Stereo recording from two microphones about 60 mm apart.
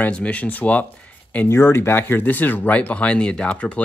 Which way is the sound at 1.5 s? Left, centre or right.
Left.